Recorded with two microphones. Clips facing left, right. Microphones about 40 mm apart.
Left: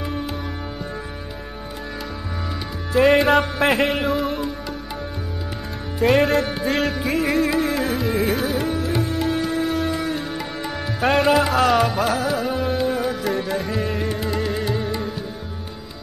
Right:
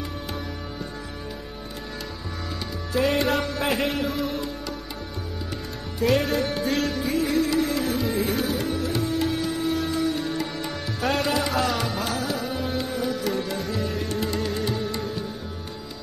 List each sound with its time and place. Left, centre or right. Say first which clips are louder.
2.9 s music: left 7 dB; left
5.9 s music: left 5 dB; left
6.2 s music: left 5 dB; centre
6.7 s music: left 6 dB; left
7.0 s music: left 3 dB; centre
11.0 s music: left 6 dB; left
11.2 s music: left 7 dB; centre
13.7 s music: left 4 dB; left
14.2 s music: left 3 dB; centre